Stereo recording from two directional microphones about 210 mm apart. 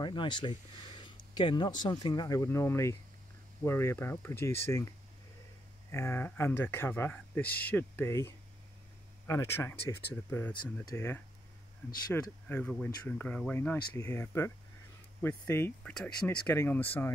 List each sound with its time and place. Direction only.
0.0 s speech: 20° left (ahead or behind)